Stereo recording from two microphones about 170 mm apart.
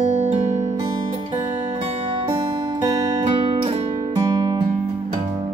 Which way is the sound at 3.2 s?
30° right (ahead or behind).